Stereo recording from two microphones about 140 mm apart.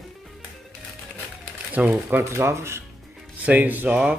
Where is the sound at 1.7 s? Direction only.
10° right (ahead or behind).